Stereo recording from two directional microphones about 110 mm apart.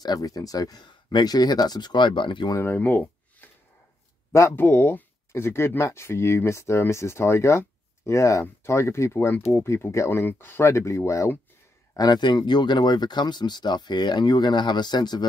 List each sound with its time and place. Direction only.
0.0 s speech: 35° left (ahead or behind)
2.5 s speech: 20° left (ahead or behind)
11.9 s speech: 35° left (ahead or behind)